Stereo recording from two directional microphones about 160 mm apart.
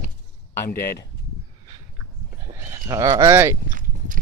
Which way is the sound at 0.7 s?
70° left (ahead or behind).